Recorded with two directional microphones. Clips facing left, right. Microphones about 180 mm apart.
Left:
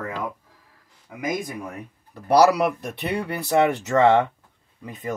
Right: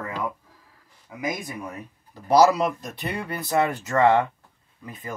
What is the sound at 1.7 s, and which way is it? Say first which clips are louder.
Speech: left 1 dB; 60° left (ahead or behind).